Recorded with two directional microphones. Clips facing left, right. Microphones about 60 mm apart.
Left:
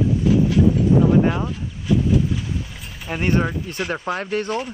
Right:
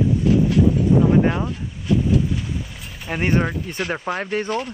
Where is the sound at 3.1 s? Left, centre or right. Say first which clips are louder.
Even; centre.